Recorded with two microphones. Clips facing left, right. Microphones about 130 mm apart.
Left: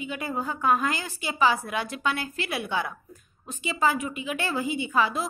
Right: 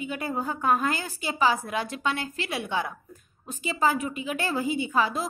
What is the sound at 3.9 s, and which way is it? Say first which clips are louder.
A woman's voice: right 1 dB; 40° right (ahead or behind).